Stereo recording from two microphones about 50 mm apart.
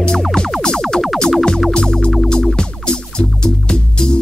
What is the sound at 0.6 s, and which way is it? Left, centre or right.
Music, centre.